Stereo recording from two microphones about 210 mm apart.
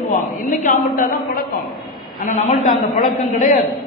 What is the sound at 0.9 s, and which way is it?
Speech, 45° left (ahead or behind).